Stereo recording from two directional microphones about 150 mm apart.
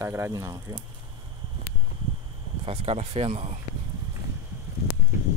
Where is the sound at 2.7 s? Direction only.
45° right (ahead or behind).